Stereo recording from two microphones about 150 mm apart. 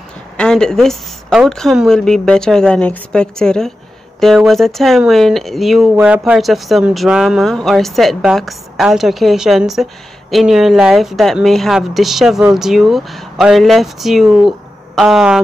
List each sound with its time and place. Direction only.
0.4 s speech: 5° left (ahead or behind)
5.9 s speech: 10° right (ahead or behind)